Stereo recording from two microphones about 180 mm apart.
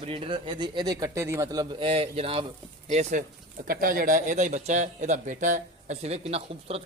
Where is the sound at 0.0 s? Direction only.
30° right (ahead or behind).